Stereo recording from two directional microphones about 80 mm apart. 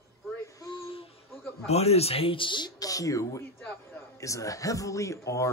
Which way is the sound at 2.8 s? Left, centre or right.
Left.